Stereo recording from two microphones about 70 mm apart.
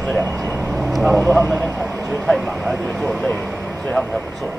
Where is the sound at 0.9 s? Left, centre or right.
Centre.